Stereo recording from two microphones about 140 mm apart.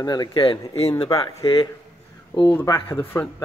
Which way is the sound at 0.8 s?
50° left (ahead or behind).